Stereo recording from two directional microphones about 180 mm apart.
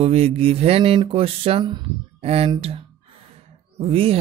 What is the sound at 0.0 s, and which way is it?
Speech, 35° right (ahead or behind).